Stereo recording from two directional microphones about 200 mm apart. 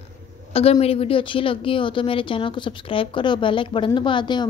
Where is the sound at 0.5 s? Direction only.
30° left (ahead or behind).